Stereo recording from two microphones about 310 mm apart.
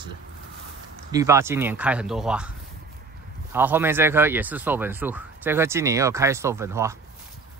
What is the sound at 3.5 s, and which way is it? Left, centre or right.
Speech, centre.